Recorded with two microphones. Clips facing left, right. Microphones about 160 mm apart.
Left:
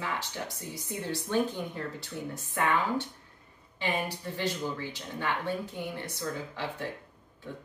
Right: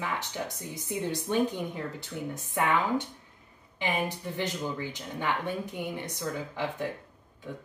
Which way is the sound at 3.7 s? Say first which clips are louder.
Right 1 dB; 20° right (ahead or behind).